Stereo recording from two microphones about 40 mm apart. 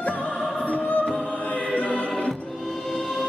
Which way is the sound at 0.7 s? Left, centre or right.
Left.